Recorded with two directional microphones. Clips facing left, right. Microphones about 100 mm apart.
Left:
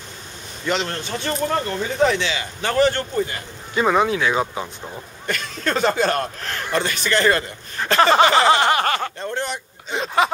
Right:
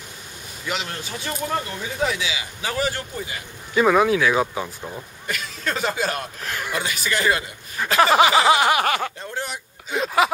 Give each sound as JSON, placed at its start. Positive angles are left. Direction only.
{"t": 0.7, "sound": "speech", "side_deg": -10}
{"t": 1.5, "sound": "speech", "side_deg": 50}
{"t": 1.9, "sound": "speech", "side_deg": -5}